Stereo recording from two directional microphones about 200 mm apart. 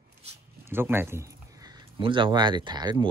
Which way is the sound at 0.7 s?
10° right (ahead or behind).